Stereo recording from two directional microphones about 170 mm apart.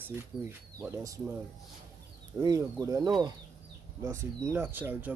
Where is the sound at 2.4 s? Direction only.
20° right (ahead or behind).